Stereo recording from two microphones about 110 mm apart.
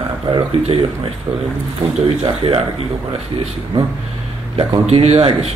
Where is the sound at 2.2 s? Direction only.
50° right (ahead or behind).